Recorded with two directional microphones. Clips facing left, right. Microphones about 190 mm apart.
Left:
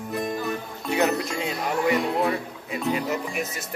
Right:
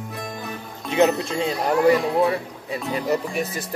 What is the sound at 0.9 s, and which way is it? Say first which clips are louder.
Music: right 4 dB; 25° right (ahead or behind).